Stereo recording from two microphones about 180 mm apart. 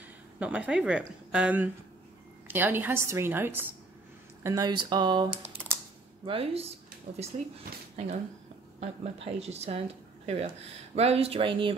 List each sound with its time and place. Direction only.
0.4 s speech: 5° right (ahead or behind); by 5.3 s 25° right (ahead or behind)
5.3 s typing: 10° right (ahead or behind)
6.2 s speech: 30° right (ahead or behind)
8.7 s speech: 35° right (ahead or behind)